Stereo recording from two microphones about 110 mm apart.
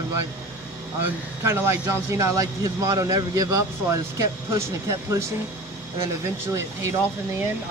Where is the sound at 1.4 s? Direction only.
25° right (ahead or behind).